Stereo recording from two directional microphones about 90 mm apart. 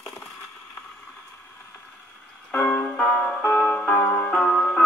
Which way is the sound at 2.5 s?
15° left (ahead or behind).